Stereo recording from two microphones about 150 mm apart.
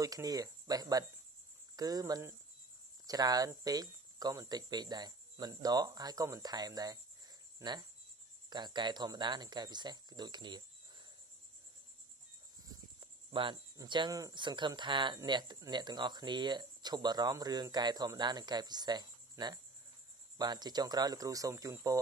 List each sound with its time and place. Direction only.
0.0 s speech: 25° right (ahead or behind)
12.6 s speech: 30° right (ahead or behind)